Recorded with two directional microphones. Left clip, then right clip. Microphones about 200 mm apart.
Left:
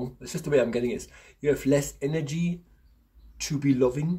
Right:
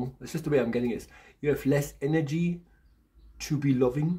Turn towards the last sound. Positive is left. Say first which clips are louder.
# left 2 dB
turn(degrees=-10)  # may be behind; listen again after turning